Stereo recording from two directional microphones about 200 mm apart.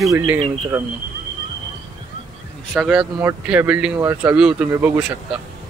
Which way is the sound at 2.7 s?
Centre (ahead or behind).